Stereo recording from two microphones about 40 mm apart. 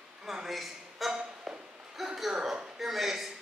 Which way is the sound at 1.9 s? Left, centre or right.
Centre.